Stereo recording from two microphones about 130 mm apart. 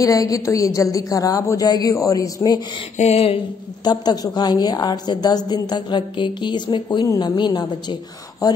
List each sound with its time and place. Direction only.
0.0 s a woman's voice: 25° left (ahead or behind)
3.0 s a sound: 50° left (ahead or behind)
3.8 s a woman's voice: 30° left (ahead or behind)